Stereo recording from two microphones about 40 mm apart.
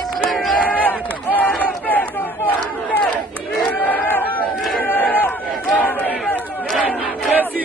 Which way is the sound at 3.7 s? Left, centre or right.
Left.